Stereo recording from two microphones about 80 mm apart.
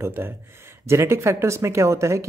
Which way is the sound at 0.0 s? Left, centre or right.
Right.